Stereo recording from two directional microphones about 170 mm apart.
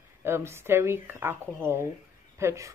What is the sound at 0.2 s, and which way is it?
Speech, 15° right (ahead or behind).